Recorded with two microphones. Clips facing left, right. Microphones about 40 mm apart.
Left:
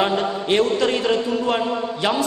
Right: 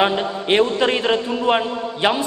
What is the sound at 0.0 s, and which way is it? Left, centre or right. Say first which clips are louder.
A man's voice: right 1 dB; right.